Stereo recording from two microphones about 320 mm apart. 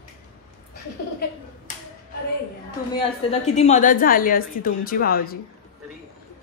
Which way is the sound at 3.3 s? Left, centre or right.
Centre.